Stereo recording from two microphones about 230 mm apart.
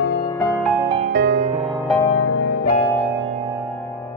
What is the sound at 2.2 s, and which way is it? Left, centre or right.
Music, left.